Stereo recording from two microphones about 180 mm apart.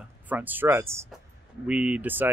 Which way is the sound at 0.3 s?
10° right (ahead or behind).